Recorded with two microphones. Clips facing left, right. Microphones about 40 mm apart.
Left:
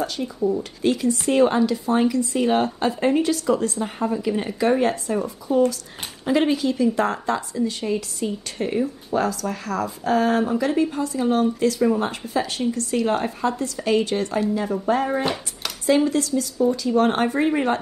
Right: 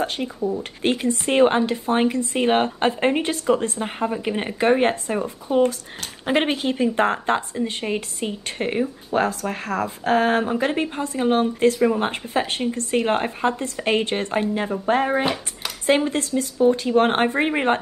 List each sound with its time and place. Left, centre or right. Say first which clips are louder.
0.0 s speech: left 1 dB; right